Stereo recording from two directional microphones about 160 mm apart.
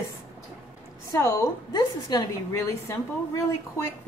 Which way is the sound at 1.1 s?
20° left (ahead or behind).